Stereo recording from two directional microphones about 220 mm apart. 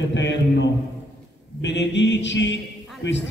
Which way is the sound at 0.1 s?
55° left (ahead or behind).